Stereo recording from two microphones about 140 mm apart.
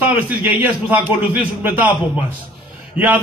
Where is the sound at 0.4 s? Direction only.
10° right (ahead or behind).